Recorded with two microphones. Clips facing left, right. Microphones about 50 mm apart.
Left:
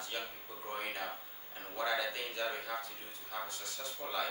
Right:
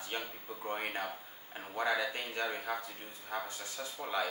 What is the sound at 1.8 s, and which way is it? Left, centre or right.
Speech, right.